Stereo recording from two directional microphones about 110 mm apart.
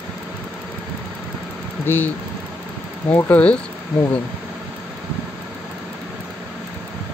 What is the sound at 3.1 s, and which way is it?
Speech, 15° left (ahead or behind).